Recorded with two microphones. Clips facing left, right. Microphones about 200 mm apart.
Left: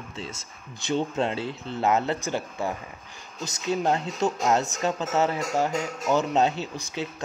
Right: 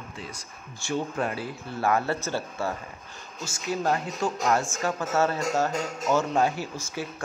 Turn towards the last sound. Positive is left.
turn(degrees=20)  # may be behind; listen again after turning